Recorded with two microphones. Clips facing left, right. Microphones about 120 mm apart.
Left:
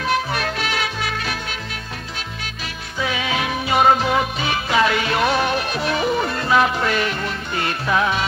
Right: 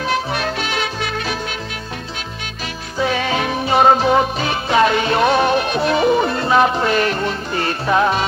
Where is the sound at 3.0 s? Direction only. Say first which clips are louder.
Right 4 dB; 35° right (ahead or behind).